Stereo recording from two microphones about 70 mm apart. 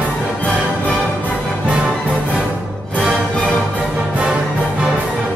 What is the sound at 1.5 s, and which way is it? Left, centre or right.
Music, centre.